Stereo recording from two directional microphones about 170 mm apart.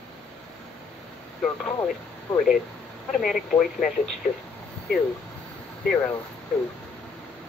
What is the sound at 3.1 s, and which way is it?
Speech, centre (ahead or behind).